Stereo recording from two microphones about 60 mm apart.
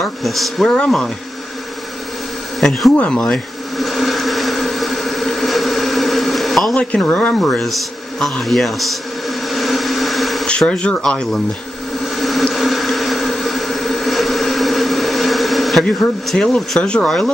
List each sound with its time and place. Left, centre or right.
0.0 s speech: centre
2.6 s speech: centre
3.2 s a sound: centre
6.7 s speech: centre
7.3 s a sound: centre
10.6 s speech: centre
12.2 s a sound: centre
12.5 s vehicle: centre
16.4 s speech: centre
16.8 s speech: centre